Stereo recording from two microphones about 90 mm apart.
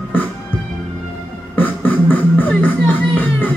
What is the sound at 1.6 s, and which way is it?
Beatboxing, 20° left (ahead or behind).